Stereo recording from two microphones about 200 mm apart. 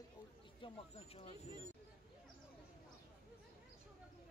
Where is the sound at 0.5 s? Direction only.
25° left (ahead or behind).